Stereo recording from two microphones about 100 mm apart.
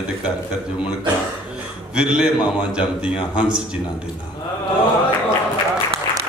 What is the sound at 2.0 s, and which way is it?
A man's voice, 10° right (ahead or behind).